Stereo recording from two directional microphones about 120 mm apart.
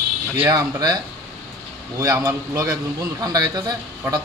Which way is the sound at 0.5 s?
35° right (ahead or behind).